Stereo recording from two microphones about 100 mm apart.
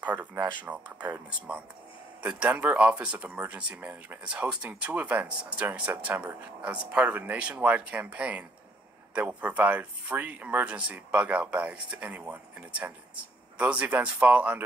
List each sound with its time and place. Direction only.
0.0 s speech: 15° right (ahead or behind)